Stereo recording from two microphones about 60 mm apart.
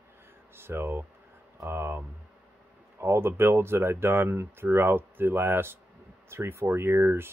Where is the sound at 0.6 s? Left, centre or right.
Right.